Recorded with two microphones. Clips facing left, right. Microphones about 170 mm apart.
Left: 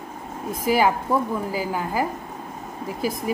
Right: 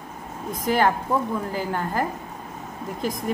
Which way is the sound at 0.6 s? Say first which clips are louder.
Left 1 dB; 5° left (ahead or behind).